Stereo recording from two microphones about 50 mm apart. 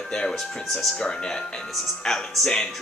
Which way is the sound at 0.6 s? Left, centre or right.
Centre.